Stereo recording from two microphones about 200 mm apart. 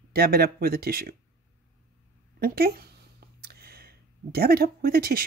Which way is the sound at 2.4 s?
50° right (ahead or behind).